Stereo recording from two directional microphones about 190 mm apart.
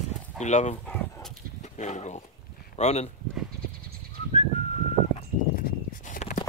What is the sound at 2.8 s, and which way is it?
Speech, 35° left (ahead or behind).